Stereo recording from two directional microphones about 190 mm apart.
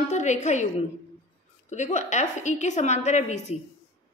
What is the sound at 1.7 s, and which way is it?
A woman's voice, 40° left (ahead or behind).